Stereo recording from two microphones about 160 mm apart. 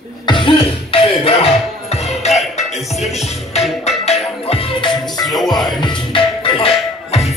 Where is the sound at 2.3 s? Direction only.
Centre (ahead or behind).